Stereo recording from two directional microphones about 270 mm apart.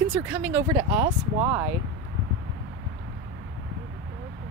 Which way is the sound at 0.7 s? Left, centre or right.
Right.